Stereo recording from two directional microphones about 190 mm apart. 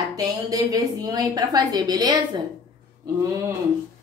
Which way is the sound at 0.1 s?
20° right (ahead or behind).